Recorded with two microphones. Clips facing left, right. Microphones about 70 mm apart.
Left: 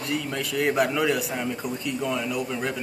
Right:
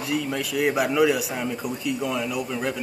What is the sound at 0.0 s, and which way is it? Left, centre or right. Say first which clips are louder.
A man's voice: right 2 dB; centre.